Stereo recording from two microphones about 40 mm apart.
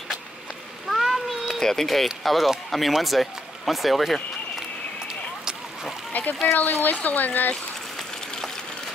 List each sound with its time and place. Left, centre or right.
0.9 s a sound: centre
1.6 s speech: centre
6.1 s speech: left